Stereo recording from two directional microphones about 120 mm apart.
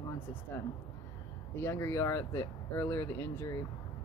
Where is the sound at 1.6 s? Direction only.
20° left (ahead or behind).